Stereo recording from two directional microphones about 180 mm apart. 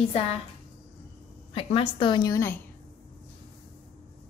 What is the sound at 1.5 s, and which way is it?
A woman's voice, 30° left (ahead or behind).